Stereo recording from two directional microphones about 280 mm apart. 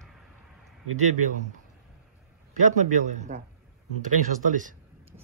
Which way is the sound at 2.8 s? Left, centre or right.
Right.